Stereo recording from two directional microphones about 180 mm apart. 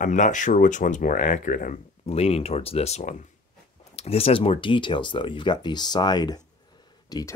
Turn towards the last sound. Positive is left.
turn(degrees=20)  # may be behind; listen again after turning